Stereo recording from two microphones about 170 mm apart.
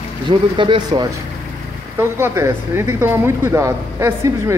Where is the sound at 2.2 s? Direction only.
15° right (ahead or behind).